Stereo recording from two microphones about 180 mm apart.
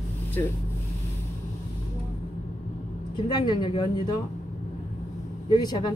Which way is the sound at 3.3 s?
25° left (ahead or behind).